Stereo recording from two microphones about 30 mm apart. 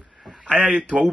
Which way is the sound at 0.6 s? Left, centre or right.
Right.